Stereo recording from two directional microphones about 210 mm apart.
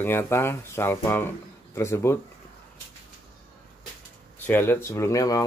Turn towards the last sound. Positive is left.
turn(degrees=15)  # may be behind; listen again after turning